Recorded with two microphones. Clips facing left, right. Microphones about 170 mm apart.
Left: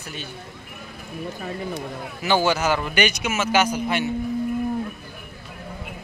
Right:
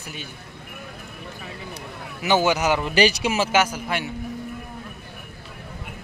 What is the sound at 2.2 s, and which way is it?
Speech, 15° right (ahead or behind).